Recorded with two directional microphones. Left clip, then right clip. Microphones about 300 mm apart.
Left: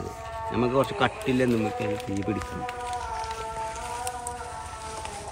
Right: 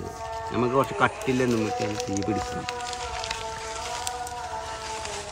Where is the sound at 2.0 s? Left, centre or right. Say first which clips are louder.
Right 3 dB; right.